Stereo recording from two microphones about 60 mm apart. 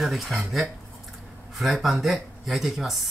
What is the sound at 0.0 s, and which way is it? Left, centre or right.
Speech, centre.